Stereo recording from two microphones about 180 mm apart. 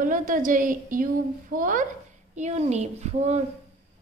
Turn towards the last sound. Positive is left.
turn(degrees=-40)  # may be behind; listen again after turning